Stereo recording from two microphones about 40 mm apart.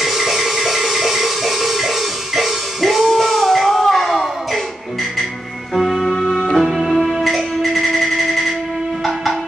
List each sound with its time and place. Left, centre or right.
0.0 s music: centre
5.8 s music: centre
6.0 s music: centre
6.5 s music: centre